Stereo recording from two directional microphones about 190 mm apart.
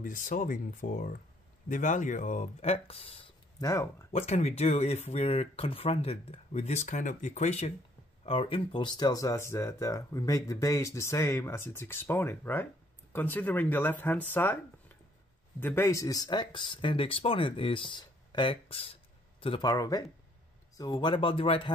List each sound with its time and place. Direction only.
0.0 s speech: 45° left (ahead or behind); by 3.8 s 20° left (ahead or behind)
4.1 s speech: 35° left (ahead or behind); by 14.6 s 10° left (ahead or behind)
15.6 s speech: 15° left (ahead or behind)